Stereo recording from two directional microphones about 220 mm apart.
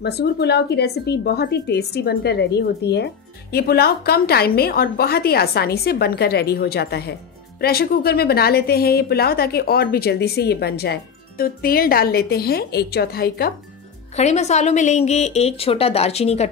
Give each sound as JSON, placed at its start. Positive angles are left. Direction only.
{"t": 0.0, "sound": "a woman's voice", "side_deg": 50}
{"t": 14.1, "sound": "a woman's voice", "side_deg": 30}